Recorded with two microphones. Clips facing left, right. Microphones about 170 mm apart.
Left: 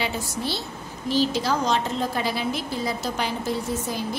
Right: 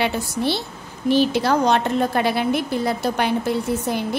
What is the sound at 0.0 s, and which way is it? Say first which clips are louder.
A woman's voice: right 6 dB; 65° right (ahead or behind).